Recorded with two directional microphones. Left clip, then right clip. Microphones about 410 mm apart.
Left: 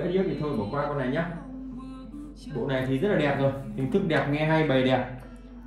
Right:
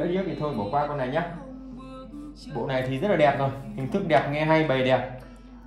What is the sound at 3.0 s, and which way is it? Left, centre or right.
Speech, centre.